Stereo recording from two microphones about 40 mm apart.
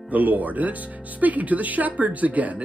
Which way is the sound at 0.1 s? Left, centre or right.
Right.